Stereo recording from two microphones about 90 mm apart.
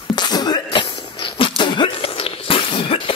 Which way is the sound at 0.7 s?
70° left (ahead or behind).